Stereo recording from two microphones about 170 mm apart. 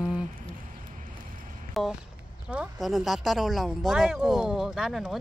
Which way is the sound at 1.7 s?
Centre (ahead or behind).